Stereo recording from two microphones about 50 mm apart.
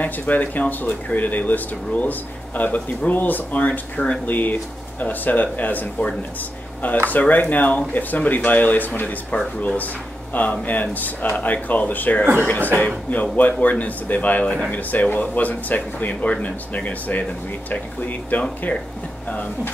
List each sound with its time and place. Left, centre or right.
0.0 s speech: left
14.4 s speech: left
14.7 s speech: left